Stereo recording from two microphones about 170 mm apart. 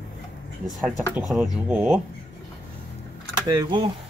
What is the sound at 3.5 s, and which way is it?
Speech, 25° right (ahead or behind).